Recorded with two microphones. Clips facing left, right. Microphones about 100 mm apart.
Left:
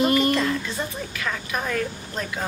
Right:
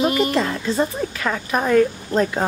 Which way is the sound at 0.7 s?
40° right (ahead or behind).